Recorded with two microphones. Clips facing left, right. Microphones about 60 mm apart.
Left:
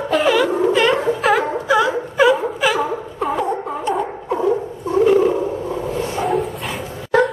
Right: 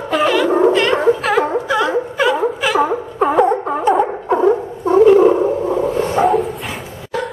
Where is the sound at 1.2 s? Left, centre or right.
Centre.